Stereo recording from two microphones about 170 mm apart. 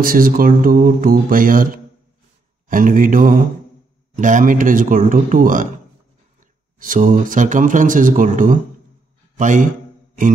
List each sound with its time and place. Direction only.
0.0 s speech: 55° right (ahead or behind)
6.8 s speech: 50° right (ahead or behind)